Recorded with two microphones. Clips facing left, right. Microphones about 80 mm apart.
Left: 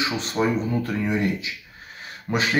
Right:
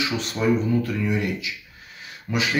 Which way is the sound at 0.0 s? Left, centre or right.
Left.